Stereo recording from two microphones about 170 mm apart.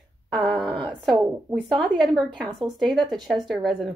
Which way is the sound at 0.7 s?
30° right (ahead or behind).